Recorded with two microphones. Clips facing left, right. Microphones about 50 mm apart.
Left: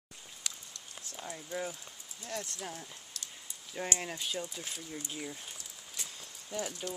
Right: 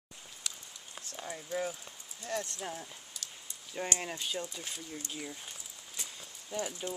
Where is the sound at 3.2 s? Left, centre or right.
Centre.